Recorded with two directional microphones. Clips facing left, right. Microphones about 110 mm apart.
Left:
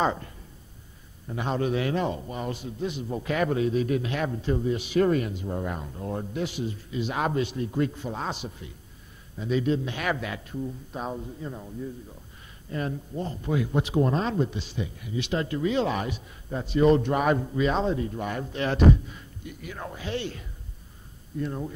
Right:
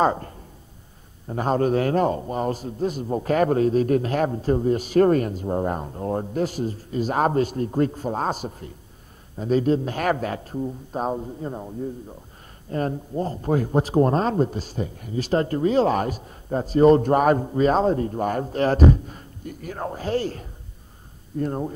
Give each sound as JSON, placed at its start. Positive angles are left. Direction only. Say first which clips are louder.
{"t": 0.0, "sound": "speech", "louder": "right 5 dB", "side_deg": -45}